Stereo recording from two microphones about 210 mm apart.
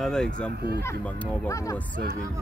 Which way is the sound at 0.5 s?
50° right (ahead or behind).